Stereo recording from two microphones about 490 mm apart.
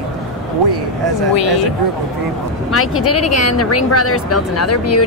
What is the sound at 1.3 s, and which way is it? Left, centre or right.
Speech, left.